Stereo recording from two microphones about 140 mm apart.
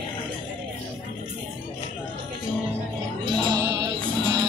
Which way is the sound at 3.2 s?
30° right (ahead or behind).